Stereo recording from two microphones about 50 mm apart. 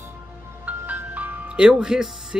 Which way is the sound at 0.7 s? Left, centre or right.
Right.